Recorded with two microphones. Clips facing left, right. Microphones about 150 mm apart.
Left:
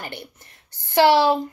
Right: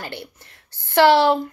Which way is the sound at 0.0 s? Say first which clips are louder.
Right 2 dB; 20° left (ahead or behind).